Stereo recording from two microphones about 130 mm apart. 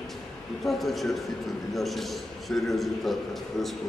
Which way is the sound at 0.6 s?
Centre (ahead or behind).